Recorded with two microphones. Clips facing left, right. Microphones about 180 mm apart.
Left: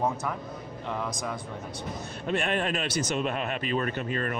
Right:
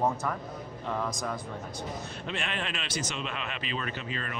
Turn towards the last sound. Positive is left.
turn(degrees=50)  # may be behind; listen again after turning